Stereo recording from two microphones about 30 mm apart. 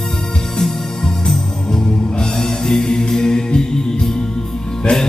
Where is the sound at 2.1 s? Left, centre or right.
Centre.